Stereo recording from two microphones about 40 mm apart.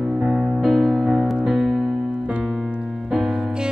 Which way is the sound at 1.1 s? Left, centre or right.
Centre.